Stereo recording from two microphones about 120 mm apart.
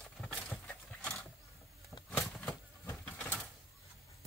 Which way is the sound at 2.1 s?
20° left (ahead or behind).